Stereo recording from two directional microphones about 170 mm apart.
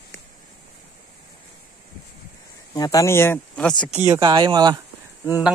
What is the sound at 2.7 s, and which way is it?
Speech, 20° left (ahead or behind).